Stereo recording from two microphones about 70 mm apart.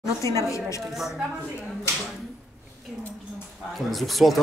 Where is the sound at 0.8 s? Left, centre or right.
Centre.